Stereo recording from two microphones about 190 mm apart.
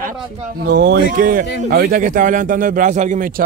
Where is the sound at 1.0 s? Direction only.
45° right (ahead or behind).